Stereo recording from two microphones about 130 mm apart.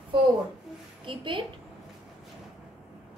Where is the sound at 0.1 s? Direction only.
35° right (ahead or behind).